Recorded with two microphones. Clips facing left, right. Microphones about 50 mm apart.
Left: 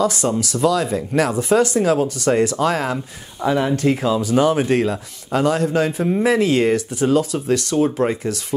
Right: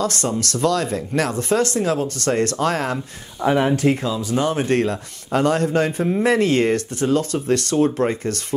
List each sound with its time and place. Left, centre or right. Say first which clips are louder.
0.0 s speech: left 3 dB; centre
3.4 s speech: right 1 dB; right
4.3 s speech: left 3 dB; centre